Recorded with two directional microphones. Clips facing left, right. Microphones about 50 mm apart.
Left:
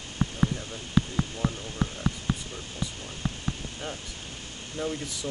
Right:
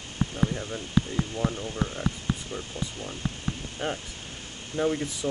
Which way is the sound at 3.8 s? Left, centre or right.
Right.